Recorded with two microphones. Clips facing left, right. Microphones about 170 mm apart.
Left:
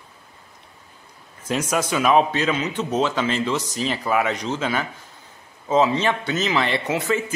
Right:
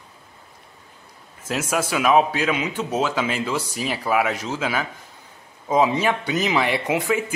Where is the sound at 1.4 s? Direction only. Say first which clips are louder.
Left 1 dB; 5° right (ahead or behind).